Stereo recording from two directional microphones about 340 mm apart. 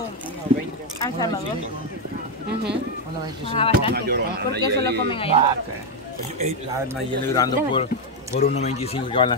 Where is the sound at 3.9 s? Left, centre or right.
Right.